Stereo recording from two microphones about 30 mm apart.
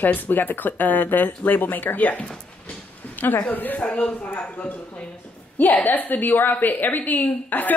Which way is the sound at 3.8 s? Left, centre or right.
Left.